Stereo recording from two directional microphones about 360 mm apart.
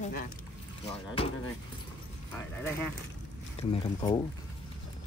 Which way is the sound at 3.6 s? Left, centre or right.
Centre.